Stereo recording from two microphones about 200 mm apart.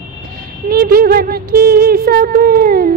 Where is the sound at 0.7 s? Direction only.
45° right (ahead or behind).